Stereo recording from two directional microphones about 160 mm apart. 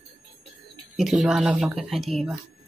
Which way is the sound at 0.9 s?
Centre (ahead or behind).